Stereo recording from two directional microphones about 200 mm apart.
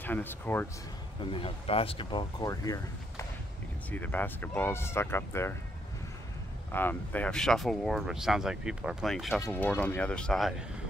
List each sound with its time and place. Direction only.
0.0 s speech: 10° left (ahead or behind)
1.3 s speech: 25° left (ahead or behind)
6.7 s speech: 10° left (ahead or behind)